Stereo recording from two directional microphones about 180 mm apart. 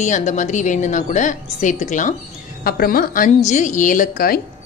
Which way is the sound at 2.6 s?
55° left (ahead or behind).